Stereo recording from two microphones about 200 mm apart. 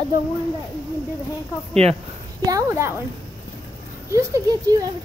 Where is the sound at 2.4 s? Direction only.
15° right (ahead or behind).